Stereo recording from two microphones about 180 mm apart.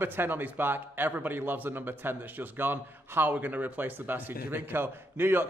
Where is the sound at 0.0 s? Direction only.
10° right (ahead or behind).